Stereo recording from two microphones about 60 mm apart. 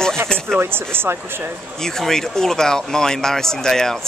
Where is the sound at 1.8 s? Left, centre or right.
Centre.